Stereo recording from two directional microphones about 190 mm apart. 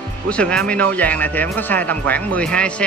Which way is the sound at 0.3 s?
5° left (ahead or behind).